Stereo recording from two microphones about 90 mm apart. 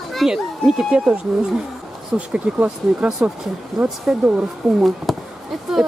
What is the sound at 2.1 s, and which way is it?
Speech, 15° right (ahead or behind).